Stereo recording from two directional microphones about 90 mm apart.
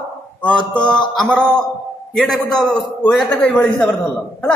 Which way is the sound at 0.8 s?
55° left (ahead or behind).